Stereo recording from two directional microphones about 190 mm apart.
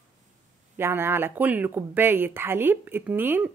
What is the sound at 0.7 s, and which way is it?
Speech, 10° right (ahead or behind).